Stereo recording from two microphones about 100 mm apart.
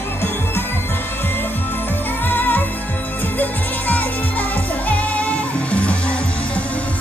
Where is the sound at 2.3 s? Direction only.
20° left (ahead or behind).